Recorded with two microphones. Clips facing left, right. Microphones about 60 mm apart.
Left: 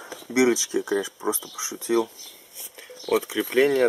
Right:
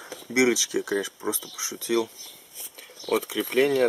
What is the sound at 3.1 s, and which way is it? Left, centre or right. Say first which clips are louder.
Speech: left 2 dB; centre.